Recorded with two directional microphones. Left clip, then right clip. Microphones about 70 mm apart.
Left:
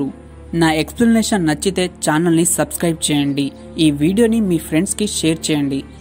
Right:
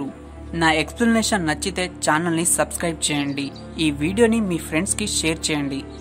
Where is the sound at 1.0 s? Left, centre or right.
Centre.